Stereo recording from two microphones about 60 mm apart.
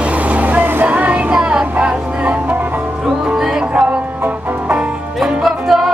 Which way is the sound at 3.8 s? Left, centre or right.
Right.